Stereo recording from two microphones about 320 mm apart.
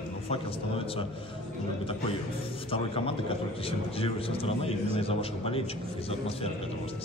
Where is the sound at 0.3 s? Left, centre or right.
Centre.